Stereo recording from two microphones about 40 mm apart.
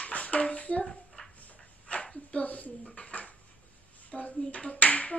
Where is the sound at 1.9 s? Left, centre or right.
Left.